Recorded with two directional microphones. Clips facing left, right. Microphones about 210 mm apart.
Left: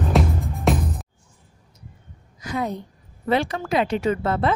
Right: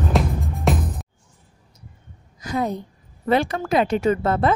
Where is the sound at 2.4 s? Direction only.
40° right (ahead or behind).